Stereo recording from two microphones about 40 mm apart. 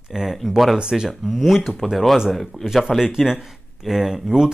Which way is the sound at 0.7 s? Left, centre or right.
Centre.